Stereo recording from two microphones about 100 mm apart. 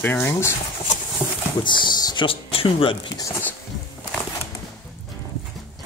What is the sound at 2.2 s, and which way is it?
Speech, 65° left (ahead or behind).